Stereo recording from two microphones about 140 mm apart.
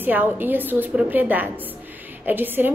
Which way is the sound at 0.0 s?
15° right (ahead or behind).